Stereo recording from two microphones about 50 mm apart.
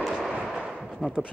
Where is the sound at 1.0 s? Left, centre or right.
Centre.